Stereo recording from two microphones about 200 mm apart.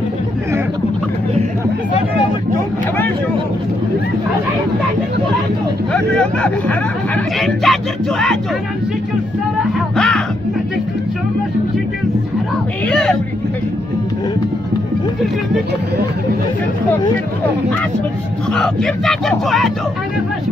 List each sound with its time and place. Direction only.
5.9 s speech: 5° left (ahead or behind)
9.9 s music: 5° left (ahead or behind)
12.8 s vehicle: 5° left (ahead or behind)
18.5 s speech: 5° left (ahead or behind)